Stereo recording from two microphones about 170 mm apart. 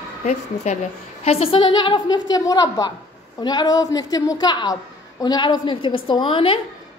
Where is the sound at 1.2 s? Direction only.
35° left (ahead or behind).